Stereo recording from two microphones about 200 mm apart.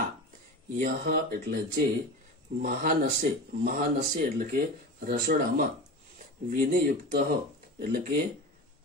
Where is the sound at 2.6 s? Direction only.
45° right (ahead or behind).